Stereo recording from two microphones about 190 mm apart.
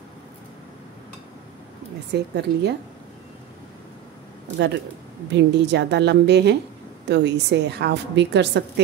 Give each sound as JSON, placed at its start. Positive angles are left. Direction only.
{"t": 2.1, "sound": "a woman's voice", "side_deg": -65}
{"t": 5.3, "sound": "a woman's voice", "side_deg": -65}